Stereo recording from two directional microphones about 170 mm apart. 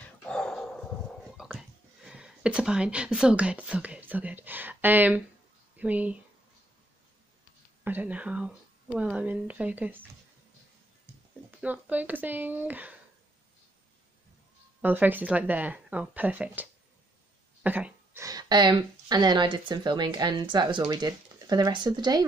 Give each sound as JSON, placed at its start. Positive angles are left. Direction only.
{"t": 0.0, "sound": "dog", "side_deg": 5}
{"t": 5.8, "sound": "speech", "side_deg": -10}
{"t": 7.8, "sound": "speech", "side_deg": -10}
{"t": 11.6, "sound": "speech", "side_deg": -10}
{"t": 14.8, "sound": "speech", "side_deg": -10}
{"t": 17.6, "sound": "speech", "side_deg": -10}